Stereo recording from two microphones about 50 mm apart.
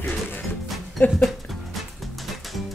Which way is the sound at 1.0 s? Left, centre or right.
Left.